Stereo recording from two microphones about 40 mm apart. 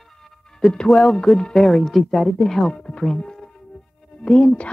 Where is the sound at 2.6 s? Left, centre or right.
Centre.